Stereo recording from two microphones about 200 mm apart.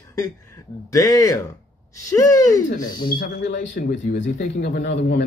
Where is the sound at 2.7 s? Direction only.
40° left (ahead or behind); by 5.2 s 55° left (ahead or behind).